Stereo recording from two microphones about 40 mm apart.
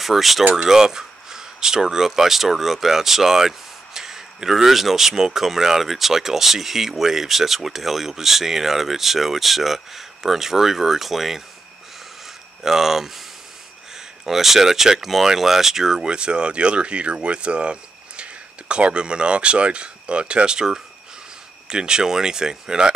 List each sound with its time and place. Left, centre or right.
0.0 s speech: centre
12.6 s speech: centre